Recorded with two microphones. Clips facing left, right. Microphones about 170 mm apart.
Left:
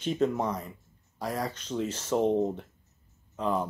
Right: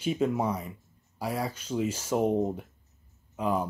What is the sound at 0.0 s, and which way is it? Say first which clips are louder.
Speech: even; 10° right (ahead or behind).